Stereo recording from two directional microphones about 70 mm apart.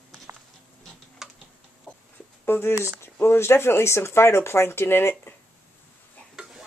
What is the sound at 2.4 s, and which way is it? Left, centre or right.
Speech, left.